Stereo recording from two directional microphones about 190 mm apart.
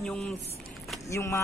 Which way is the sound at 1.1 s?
15° left (ahead or behind).